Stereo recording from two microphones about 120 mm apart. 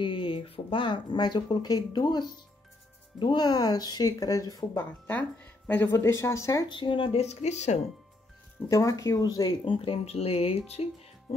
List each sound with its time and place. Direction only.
0.0 s speech: 45° left (ahead or behind); by 6.6 s 25° left (ahead or behind)
6.7 s speech: 45° left (ahead or behind)
7.4 s speech: 70° left (ahead or behind)
8.6 s speech: 25° left (ahead or behind)
9.7 s speech: 50° left (ahead or behind)